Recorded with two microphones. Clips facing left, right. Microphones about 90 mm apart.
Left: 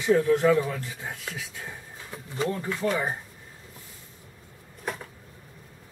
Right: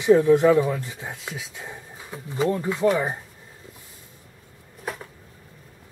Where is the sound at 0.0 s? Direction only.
20° right (ahead or behind).